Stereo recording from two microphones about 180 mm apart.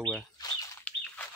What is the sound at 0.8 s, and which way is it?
Chicken, 5° left (ahead or behind).